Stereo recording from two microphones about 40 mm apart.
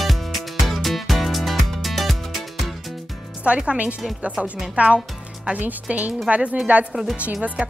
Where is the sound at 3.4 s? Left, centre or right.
Right.